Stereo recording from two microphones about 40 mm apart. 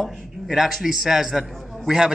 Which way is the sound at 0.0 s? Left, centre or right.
Centre.